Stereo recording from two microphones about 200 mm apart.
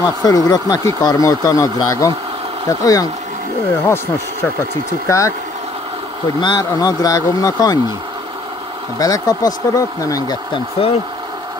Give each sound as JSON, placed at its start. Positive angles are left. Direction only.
{"t": 0.2, "sound": "speech", "side_deg": 20}
{"t": 6.4, "sound": "speech", "side_deg": 20}
{"t": 8.9, "sound": "speech", "side_deg": 20}